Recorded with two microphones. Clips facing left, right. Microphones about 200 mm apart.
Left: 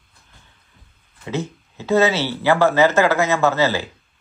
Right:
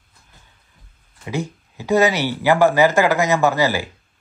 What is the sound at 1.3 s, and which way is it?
Speech, 15° right (ahead or behind).